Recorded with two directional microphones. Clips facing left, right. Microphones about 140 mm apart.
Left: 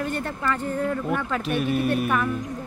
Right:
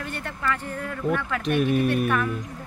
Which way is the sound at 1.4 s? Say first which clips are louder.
Right 5 dB; centre (ahead or behind).